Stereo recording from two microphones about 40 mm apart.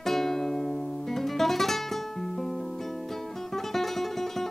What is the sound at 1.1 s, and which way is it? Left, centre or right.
Guitar, centre.